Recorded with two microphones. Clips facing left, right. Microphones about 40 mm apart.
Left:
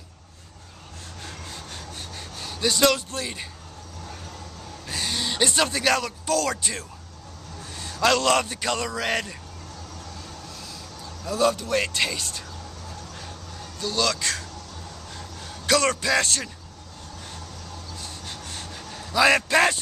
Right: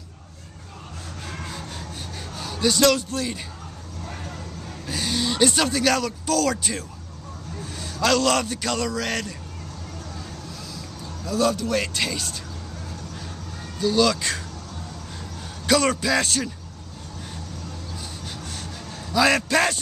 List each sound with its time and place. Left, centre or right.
1.5 s a sound: centre
4.8 s a man's voice: centre
11.2 s a man's voice: centre
13.7 s a man's voice: centre
15.6 s a man's voice: centre
18.2 s a sound: centre